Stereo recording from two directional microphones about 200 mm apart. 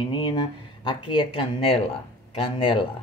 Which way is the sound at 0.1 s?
20° left (ahead or behind).